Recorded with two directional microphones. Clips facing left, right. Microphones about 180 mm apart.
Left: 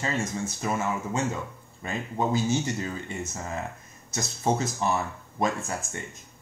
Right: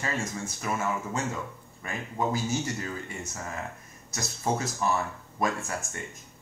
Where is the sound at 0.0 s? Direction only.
25° left (ahead or behind).